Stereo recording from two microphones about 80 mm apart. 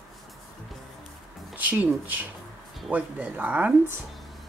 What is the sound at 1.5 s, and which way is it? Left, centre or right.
Speech, centre.